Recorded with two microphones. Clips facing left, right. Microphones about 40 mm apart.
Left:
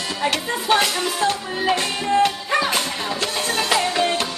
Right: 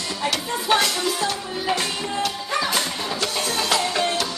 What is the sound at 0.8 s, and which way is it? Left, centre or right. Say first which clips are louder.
Music: left 2 dB; left.